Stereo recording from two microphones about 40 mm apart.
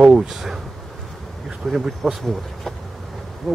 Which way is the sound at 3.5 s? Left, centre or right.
Centre.